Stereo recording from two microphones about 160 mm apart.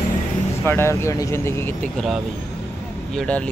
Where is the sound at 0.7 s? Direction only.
15° left (ahead or behind).